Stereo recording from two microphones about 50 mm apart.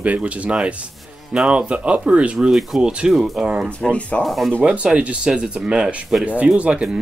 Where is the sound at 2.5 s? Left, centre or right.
Centre.